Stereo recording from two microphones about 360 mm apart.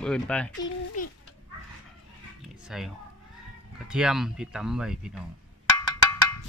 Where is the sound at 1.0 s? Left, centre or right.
Left.